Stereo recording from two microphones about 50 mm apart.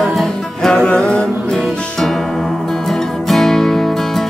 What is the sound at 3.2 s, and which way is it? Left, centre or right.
Music, centre.